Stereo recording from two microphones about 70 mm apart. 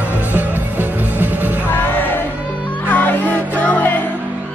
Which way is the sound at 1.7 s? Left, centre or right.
Left.